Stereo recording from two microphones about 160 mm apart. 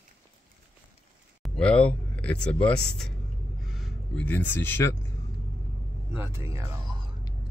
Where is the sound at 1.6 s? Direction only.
5° left (ahead or behind).